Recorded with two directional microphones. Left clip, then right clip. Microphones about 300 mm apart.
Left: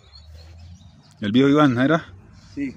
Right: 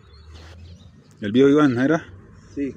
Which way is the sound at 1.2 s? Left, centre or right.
Left.